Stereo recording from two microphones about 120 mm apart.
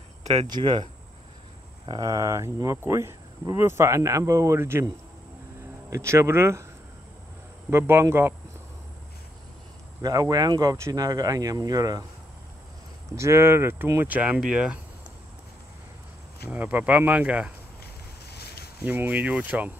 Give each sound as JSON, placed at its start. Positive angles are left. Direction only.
{"t": 0.2, "sound": "a sound", "side_deg": -60}
{"t": 0.5, "sound": "speech", "side_deg": -40}
{"t": 1.9, "sound": "speech", "side_deg": -30}
{"t": 5.9, "sound": "speech", "side_deg": -25}
{"t": 7.7, "sound": "speech", "side_deg": -20}
{"t": 10.0, "sound": "speech", "side_deg": -30}
{"t": 13.1, "sound": "speech", "side_deg": -25}
{"t": 16.4, "sound": "speech", "side_deg": -15}
{"t": 18.9, "sound": "speech", "side_deg": -15}